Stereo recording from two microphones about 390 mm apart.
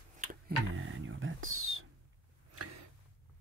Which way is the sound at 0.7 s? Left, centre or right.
Right.